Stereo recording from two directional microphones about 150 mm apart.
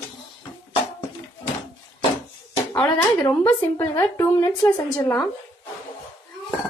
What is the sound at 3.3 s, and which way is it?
Speech, 15° left (ahead or behind).